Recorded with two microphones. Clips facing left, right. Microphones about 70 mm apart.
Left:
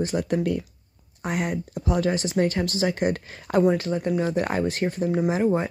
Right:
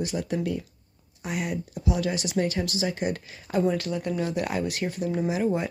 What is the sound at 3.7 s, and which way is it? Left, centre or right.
Speech, left.